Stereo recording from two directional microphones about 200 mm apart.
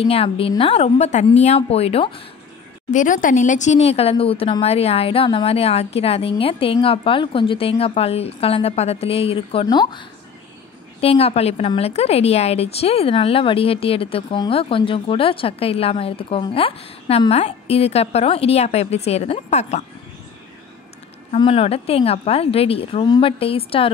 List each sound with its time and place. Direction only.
0.0 s a woman's voice: 30° left (ahead or behind)
2.9 s a woman's voice: 40° left (ahead or behind)
21.4 s a woman's voice: 30° left (ahead or behind)